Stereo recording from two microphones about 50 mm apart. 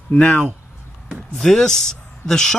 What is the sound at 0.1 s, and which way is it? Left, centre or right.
Speech, centre.